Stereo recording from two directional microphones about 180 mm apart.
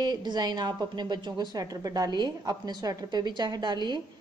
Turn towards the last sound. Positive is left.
turn(degrees=-25)  # may be behind; listen again after turning